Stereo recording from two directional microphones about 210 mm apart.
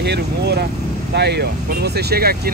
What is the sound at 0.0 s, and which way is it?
Speech, 50° right (ahead or behind).